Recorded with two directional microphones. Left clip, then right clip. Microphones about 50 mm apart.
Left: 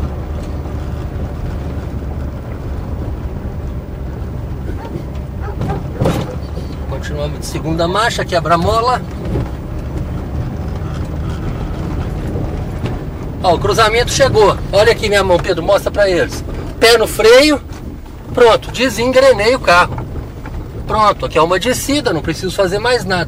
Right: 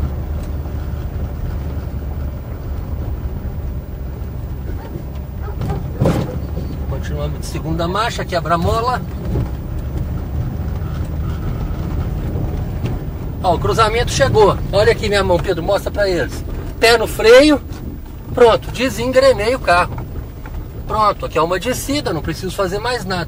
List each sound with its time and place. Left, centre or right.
6.9 s vehicle: centre
7.6 s speech: centre
11.4 s vehicle: centre
13.4 s speech: centre
15.4 s speech: left
20.9 s speech: centre
22.0 s speech: centre